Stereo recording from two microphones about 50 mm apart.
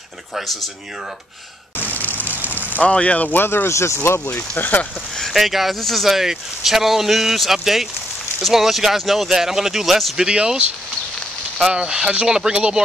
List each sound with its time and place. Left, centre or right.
2.0 s rain on surface: left
2.3 s vehicle: right
2.8 s speech: left
3.3 s speech: left
3.6 s speech: left
4.3 s speech: left
5.3 s speech: centre
11.6 s speech: centre